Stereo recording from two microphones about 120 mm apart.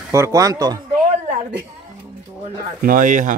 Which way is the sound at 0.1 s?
25° right (ahead or behind).